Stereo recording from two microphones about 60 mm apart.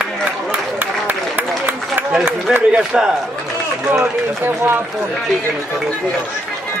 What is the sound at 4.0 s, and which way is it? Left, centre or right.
Run, right.